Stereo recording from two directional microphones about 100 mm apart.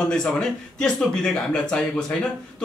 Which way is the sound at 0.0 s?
5° left (ahead or behind).